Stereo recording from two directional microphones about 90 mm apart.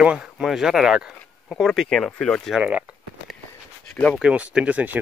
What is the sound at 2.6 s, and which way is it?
Speech, 15° right (ahead or behind).